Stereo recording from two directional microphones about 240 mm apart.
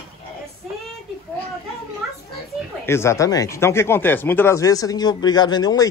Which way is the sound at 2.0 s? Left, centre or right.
Centre.